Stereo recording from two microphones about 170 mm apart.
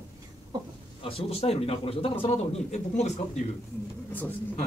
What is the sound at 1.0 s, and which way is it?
Speech, 35° left (ahead or behind).